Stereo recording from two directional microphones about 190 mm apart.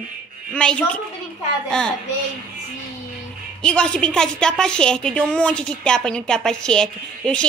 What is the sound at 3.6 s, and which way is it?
A woman's voice, 5° left (ahead or behind).